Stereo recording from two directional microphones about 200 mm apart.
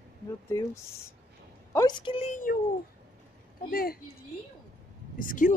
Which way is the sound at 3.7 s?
50° left (ahead or behind).